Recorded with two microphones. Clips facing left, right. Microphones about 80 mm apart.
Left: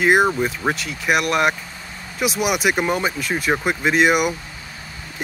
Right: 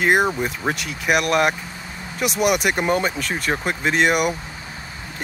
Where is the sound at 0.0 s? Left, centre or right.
Centre.